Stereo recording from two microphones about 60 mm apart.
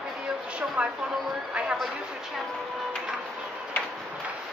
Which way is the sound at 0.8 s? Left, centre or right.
Right.